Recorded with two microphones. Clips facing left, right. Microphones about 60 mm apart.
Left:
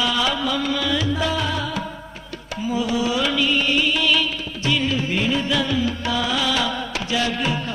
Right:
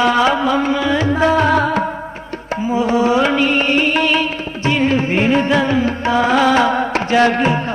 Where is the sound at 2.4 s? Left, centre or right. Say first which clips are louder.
Right 6 dB; right.